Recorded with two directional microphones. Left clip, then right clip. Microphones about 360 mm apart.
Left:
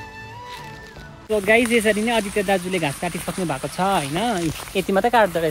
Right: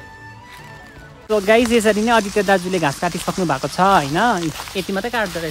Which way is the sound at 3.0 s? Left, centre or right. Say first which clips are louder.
Right 5 dB; right.